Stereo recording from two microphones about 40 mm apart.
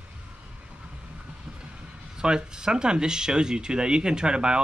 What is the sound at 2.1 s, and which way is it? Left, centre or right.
Speech, centre.